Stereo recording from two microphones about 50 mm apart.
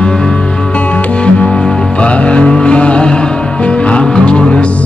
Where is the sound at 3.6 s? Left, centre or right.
Left.